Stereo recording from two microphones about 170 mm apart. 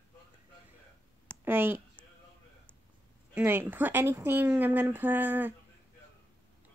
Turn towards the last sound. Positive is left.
turn(degrees=-10)  # may be behind; listen again after turning